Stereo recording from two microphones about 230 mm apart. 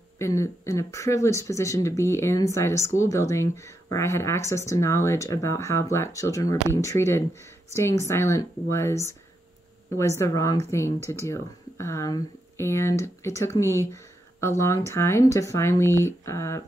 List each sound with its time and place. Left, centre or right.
0.2 s speech: centre
9.9 s speech: centre